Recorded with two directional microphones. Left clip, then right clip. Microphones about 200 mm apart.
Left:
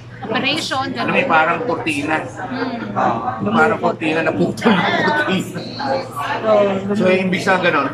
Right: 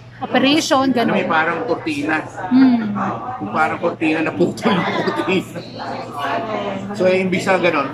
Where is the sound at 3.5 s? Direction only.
5° right (ahead or behind).